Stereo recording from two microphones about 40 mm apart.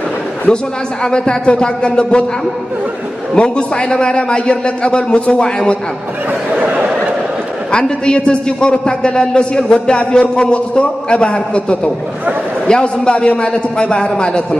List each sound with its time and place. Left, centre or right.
0.5 s a man's voice: left
3.3 s a man's voice: left
6.6 s a sound: right
7.7 s a man's voice: left